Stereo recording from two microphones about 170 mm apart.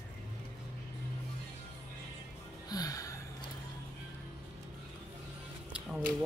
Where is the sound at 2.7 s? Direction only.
20° left (ahead or behind).